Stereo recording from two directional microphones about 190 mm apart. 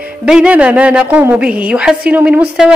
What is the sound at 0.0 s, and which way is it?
Speech, 5° right (ahead or behind).